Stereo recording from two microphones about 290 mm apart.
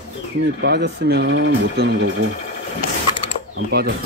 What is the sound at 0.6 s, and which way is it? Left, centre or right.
Speech, right.